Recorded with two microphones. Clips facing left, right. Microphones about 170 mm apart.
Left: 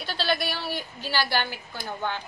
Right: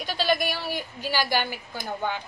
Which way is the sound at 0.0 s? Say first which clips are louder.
Right 2 dB; 15° right (ahead or behind).